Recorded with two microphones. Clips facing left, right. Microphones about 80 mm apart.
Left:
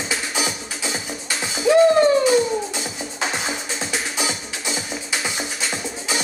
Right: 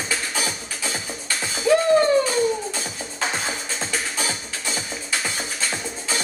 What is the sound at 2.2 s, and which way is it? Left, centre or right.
Music, centre.